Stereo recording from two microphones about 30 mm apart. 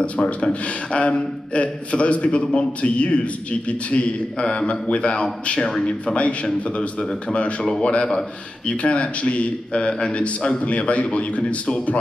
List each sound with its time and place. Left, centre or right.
0.0 s a man's voice: left
8.0 s speech: left
8.8 s a man's voice: left
10.6 s a man's voice: left